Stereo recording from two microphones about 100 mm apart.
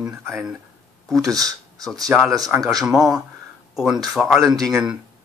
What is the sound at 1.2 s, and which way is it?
Speech, 35° right (ahead or behind).